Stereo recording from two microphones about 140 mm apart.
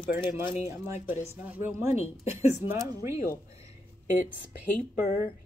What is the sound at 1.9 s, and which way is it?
Speech, 50° left (ahead or behind).